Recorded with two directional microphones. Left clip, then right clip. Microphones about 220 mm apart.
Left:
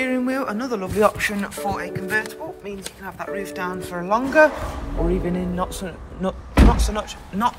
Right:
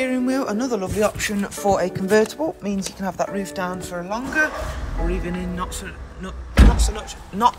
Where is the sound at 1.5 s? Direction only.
20° right (ahead or behind).